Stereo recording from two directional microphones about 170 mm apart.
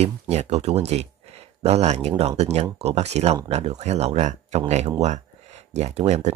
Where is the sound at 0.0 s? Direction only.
40° right (ahead or behind).